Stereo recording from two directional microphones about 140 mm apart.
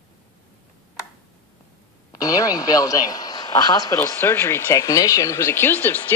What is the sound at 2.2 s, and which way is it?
A man's voice, 25° left (ahead or behind).